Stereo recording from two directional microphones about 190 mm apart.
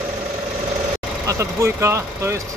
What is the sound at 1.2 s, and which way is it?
Speech, 15° right (ahead or behind).